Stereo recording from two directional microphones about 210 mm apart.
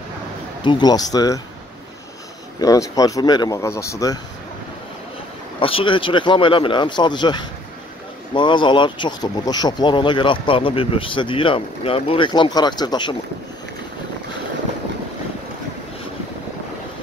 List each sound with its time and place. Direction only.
0.7 s speech: 20° left (ahead or behind)
2.6 s speech: 15° left (ahead or behind)
5.6 s speech: 25° left (ahead or behind)